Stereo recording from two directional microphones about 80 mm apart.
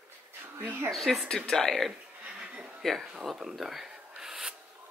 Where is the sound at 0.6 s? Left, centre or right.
Right.